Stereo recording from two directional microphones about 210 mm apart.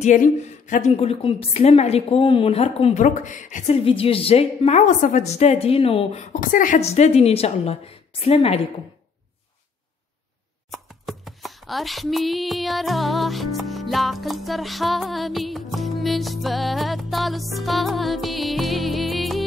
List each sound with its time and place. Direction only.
0.0 s a woman's voice: 35° left (ahead or behind)
10.7 s music: centre (ahead or behind)